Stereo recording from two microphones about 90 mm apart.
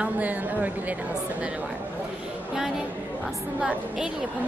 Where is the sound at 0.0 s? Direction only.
20° right (ahead or behind).